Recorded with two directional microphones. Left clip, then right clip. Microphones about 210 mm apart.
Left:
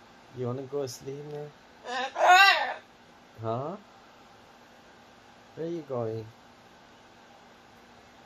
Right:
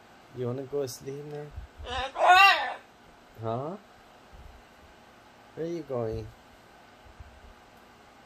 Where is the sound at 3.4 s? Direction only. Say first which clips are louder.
Even; 20° right (ahead or behind).